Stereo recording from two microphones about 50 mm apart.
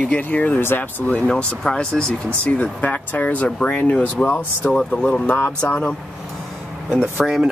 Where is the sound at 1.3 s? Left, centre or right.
Centre.